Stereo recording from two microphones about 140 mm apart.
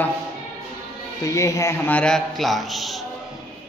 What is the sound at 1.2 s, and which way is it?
Speech, 20° left (ahead or behind).